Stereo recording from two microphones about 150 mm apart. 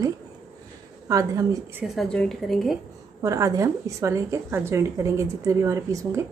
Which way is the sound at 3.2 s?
20° right (ahead or behind).